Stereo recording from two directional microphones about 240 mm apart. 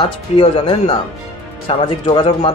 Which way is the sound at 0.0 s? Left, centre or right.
Left.